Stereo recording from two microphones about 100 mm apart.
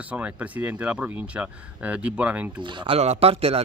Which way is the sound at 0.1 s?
15° right (ahead or behind).